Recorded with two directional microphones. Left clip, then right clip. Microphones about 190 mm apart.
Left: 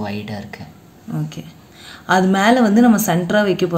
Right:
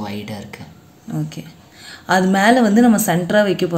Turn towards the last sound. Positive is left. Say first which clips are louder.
# right 1 dB
turn(degrees=0)  # may be behind; listen again after turning